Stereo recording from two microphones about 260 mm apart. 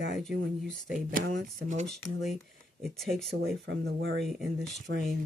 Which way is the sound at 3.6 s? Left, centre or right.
Right.